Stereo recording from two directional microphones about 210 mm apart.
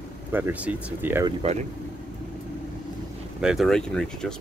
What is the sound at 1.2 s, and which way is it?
Speech, 30° right (ahead or behind).